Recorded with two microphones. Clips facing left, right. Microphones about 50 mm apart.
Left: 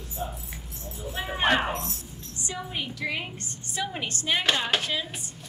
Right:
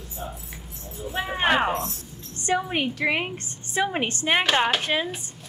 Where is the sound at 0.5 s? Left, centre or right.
Centre.